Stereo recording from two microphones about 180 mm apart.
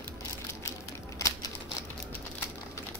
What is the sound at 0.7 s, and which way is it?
Crushing, 15° left (ahead or behind).